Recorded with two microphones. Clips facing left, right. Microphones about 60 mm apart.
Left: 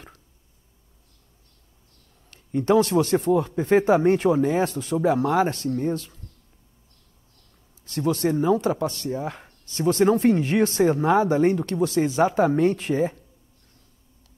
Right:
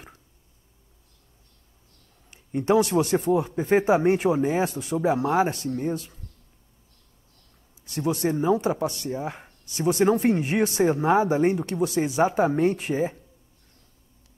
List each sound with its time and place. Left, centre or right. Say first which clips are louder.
2.3 s speech: left 2 dB; centre
8.1 s speech: left 2 dB; centre